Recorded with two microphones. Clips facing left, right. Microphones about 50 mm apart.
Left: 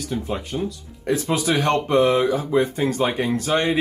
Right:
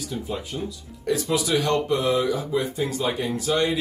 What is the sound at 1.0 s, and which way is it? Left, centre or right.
Speech, left.